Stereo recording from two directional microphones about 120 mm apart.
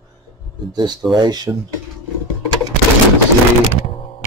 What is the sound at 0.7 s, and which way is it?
Speech, 40° right (ahead or behind).